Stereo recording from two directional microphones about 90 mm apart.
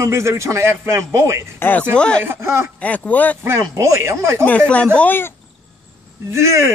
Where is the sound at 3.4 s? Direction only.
30° right (ahead or behind).